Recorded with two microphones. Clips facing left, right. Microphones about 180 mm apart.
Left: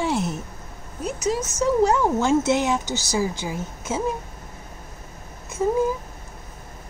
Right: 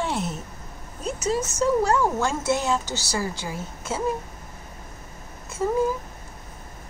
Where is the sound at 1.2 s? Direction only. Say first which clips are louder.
Even; 15° left (ahead or behind).